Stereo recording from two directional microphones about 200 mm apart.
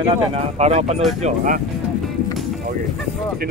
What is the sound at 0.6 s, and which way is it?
Speech, 35° right (ahead or behind).